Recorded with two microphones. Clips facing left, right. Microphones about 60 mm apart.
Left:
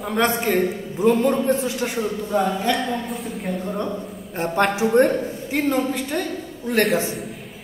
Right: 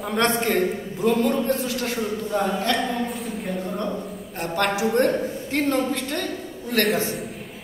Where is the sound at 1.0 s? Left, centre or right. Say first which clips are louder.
Left 3 dB; left; by 3.8 s centre.